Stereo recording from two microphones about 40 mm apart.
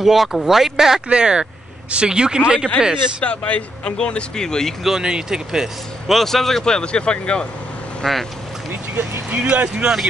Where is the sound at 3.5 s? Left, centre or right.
Left.